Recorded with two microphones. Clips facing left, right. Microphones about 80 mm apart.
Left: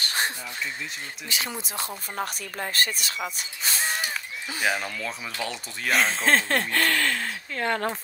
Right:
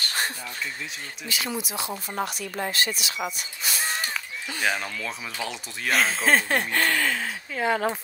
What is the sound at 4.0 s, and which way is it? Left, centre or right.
Speech, centre.